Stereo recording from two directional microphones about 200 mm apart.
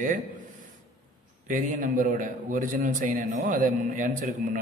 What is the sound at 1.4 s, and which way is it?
A man's voice, 40° right (ahead or behind).